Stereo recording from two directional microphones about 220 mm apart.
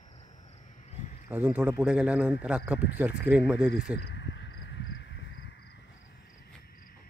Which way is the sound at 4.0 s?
50° left (ahead or behind).